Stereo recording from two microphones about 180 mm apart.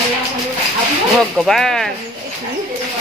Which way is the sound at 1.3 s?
Centre (ahead or behind).